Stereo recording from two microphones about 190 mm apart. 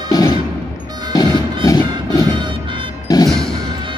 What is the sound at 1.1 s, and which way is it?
Music, 20° left (ahead or behind).